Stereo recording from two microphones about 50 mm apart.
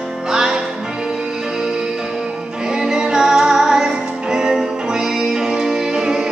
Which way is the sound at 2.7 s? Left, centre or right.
Centre.